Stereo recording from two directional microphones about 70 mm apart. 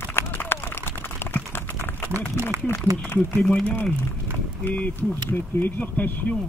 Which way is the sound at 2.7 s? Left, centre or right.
Left.